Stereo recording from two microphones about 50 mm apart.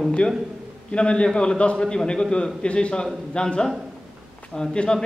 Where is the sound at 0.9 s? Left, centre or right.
Centre.